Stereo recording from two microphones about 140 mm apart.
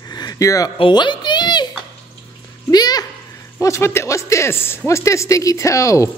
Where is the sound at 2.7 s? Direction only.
30° left (ahead or behind).